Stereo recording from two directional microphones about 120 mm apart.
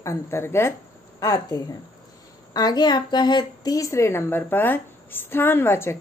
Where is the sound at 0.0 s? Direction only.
25° left (ahead or behind).